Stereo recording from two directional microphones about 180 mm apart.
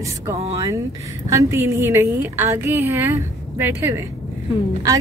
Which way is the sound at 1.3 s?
15° right (ahead or behind).